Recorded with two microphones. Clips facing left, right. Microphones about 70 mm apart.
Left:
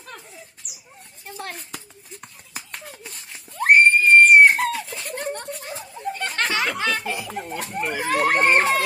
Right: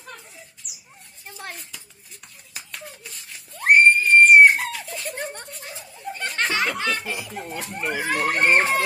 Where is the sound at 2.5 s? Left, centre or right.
Left.